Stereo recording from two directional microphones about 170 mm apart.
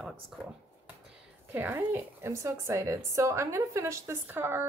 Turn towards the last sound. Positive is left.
turn(degrees=-15)  # may be behind; listen again after turning